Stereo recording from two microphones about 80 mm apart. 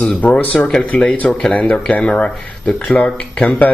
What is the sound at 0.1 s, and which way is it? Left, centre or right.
Speech, centre.